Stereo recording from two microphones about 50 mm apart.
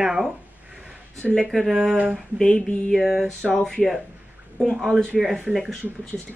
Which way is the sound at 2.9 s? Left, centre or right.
Centre.